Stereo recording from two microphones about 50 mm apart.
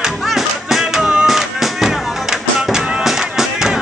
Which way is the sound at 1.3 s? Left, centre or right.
Centre.